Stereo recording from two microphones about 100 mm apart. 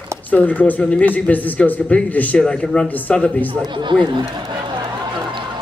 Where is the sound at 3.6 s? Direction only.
50° right (ahead or behind).